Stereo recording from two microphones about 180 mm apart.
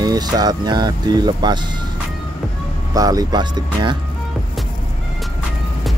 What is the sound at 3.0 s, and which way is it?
Speech, 20° right (ahead or behind).